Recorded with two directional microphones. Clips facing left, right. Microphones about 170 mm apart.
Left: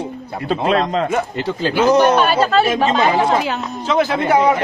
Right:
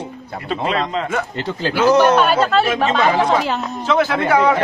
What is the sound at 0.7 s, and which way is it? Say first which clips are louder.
Speech: left 5 dB; 45° left (ahead or behind).